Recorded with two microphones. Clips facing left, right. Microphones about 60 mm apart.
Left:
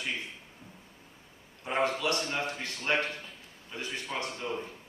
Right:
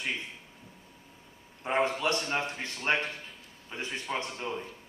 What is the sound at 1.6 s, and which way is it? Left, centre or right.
A man's voice, right.